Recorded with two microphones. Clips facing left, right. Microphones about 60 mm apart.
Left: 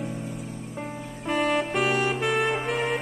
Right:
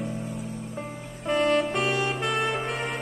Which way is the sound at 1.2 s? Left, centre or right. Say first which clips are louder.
Right 2 dB; centre.